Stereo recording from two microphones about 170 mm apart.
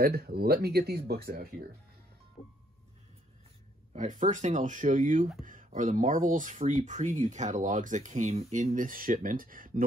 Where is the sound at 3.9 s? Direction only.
50° right (ahead or behind).